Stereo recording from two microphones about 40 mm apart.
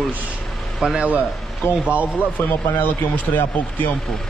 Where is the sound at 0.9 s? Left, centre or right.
Right.